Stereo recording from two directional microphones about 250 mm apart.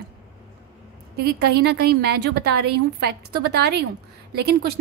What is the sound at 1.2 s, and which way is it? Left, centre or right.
A woman's voice, right.